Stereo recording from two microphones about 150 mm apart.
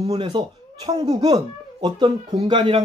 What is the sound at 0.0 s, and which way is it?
Speech, 45° right (ahead or behind).